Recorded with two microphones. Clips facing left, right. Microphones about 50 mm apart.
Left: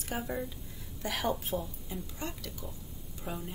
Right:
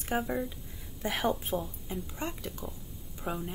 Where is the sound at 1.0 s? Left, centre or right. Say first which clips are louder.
Right 2 dB; right.